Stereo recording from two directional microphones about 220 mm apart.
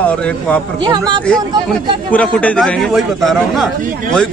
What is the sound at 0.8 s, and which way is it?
Speech, 20° right (ahead or behind).